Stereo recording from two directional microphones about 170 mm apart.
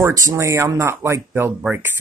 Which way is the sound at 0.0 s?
20° right (ahead or behind).